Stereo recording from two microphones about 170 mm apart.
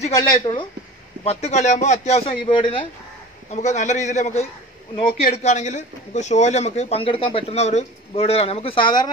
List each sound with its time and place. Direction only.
0.4 s speech: 30° left (ahead or behind)
3.4 s a man's voice: 40° left (ahead or behind)
5.3 s speech: 45° left (ahead or behind); by 9.1 s 25° left (ahead or behind)